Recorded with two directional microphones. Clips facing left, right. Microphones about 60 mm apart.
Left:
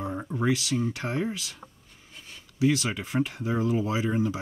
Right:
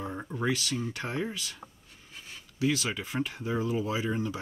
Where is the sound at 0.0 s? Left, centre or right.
Centre.